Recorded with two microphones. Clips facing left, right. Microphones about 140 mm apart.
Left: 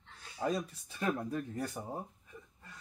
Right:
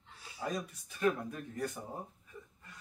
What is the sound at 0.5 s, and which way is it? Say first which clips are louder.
A man's voice: left 3 dB; 30° left (ahead or behind).